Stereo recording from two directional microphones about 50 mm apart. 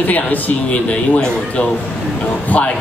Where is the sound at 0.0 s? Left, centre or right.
Left.